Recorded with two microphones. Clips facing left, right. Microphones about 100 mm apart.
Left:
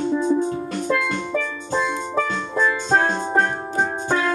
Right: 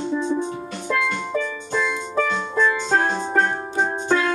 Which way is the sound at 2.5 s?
30° left (ahead or behind).